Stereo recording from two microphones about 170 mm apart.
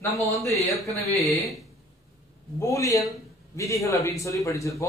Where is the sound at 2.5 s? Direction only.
15° left (ahead or behind).